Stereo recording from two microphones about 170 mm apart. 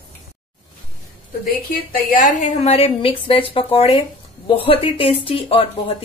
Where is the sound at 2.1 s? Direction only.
50° left (ahead or behind).